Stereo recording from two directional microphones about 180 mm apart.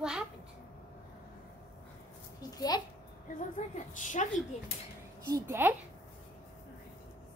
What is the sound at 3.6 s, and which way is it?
Speech, 45° left (ahead or behind).